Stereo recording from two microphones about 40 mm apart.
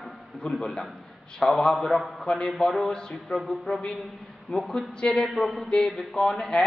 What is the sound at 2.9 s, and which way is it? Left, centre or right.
A man's voice, left.